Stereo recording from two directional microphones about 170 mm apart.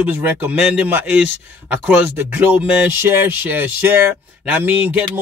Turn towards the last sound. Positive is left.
turn(degrees=-10)  # may be behind; listen again after turning